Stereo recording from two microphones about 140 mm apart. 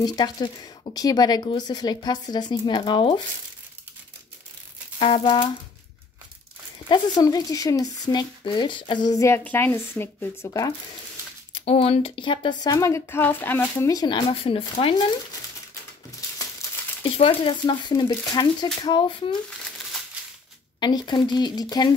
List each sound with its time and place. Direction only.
0.0 s speech: 30° left (ahead or behind)
4.9 s speech: 40° left (ahead or behind)
6.9 s speech: 25° left (ahead or behind)
11.6 s speech: 45° left (ahead or behind)
17.0 s speech: 40° left (ahead or behind)
20.8 s speech: 30° left (ahead or behind)